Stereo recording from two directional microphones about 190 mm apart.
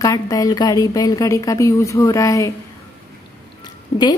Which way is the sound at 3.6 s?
25° left (ahead or behind).